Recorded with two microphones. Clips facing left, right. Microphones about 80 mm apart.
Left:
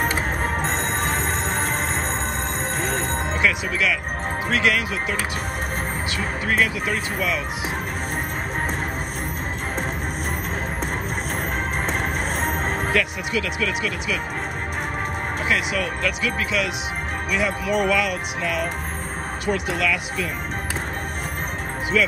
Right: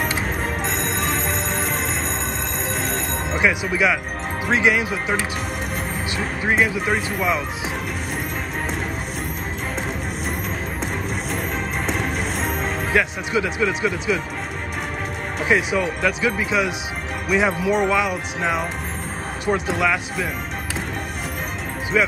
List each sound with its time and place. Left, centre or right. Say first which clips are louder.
0.0 s music: left 1 dB; left
3.4 s speech: right 4 dB; centre
6.1 s speech: right 2 dB; right
11.8 s music: right 1 dB; left
12.9 s speech: right 6 dB; right
15.4 s speech: right 5 dB; right